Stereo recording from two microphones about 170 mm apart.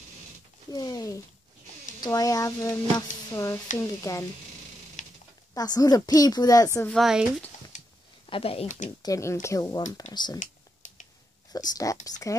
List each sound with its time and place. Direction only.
0.7 s speech: 20° left (ahead or behind)
5.0 s a sound: 45° left (ahead or behind)
5.5 s speech: 20° left (ahead or behind)
6.9 s speech: centre (ahead or behind)
7.7 s a sound: 45° left (ahead or behind)
8.3 s speech: 35° left (ahead or behind)
8.6 s speech: 45° left (ahead or behind)
9.0 s speech: 20° left (ahead or behind)
10.8 s finger snapping: 50° left (ahead or behind)
11.5 s speech: 20° left (ahead or behind)